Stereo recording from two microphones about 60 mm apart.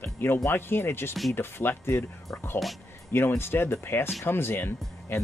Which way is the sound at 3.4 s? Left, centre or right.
Left.